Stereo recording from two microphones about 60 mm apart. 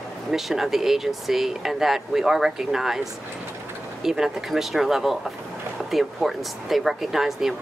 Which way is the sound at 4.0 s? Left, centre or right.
Centre.